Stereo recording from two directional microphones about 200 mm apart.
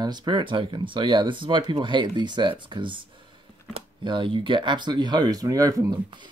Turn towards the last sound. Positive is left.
turn(degrees=-20)  # may be behind; listen again after turning